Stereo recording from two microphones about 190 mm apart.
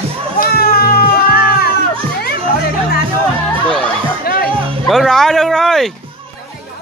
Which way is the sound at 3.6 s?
5° left (ahead or behind).